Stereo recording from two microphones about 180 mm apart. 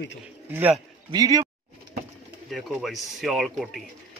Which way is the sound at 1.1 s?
20° right (ahead or behind).